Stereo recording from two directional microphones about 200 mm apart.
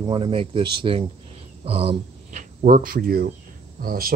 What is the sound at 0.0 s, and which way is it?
Speech, 25° right (ahead or behind).